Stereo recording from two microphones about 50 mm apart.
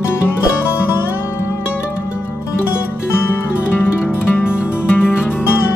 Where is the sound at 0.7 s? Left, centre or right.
Left.